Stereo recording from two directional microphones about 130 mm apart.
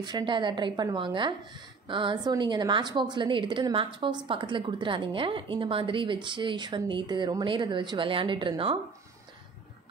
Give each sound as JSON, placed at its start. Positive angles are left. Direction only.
{"t": 0.0, "sound": "speech", "side_deg": -35}